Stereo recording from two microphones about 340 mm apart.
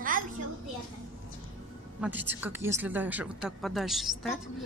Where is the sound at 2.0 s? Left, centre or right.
Centre.